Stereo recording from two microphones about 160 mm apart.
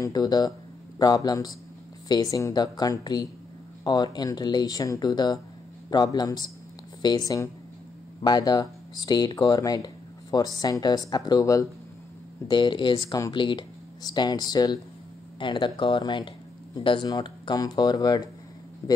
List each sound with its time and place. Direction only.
0.0 s speech: 25° left (ahead or behind)